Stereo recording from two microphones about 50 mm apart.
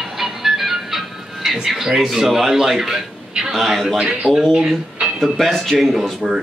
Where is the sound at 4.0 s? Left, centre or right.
Right.